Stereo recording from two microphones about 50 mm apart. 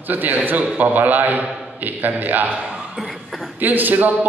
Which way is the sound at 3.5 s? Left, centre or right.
Right.